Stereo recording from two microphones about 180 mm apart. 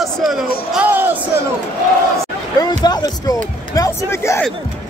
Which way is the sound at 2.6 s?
20° left (ahead or behind).